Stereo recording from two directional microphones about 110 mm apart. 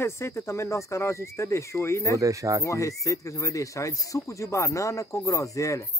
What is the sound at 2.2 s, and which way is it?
Speech, 30° right (ahead or behind).